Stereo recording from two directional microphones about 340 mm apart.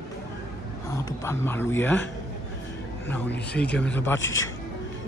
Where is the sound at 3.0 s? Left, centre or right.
Centre.